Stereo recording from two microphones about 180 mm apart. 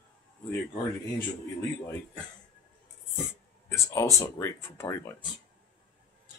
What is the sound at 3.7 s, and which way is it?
Speech, 15° left (ahead or behind).